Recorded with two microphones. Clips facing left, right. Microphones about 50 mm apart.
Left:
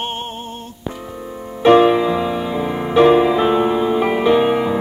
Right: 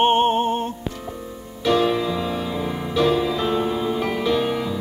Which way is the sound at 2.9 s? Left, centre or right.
Left.